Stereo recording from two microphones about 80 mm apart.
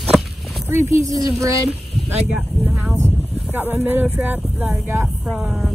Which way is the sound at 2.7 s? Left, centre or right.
Centre.